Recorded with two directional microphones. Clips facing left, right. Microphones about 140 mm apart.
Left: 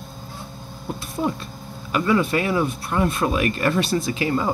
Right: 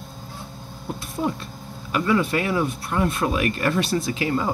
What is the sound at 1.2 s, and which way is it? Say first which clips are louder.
Speech: left 1 dB; 25° left (ahead or behind).